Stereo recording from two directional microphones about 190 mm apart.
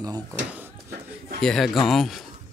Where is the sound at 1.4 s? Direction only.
Centre (ahead or behind).